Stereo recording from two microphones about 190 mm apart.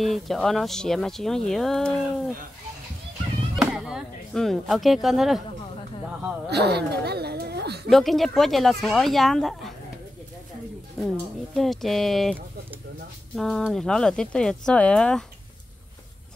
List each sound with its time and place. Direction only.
0.0 s speech: centre (ahead or behind)
3.5 s speech: 5° right (ahead or behind)
6.5 s speech: 60° right (ahead or behind)
7.9 s speech: centre (ahead or behind)
11.0 s speech: centre (ahead or behind)
13.4 s speech: centre (ahead or behind)